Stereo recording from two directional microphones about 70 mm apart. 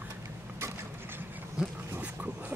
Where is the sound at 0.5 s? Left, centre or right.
Right.